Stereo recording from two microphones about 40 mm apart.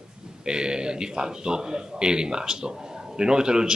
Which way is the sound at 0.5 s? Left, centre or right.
Centre.